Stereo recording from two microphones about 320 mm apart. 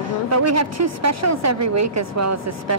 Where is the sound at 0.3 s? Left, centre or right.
Right.